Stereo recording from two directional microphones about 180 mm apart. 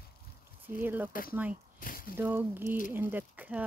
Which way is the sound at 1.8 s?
50° left (ahead or behind).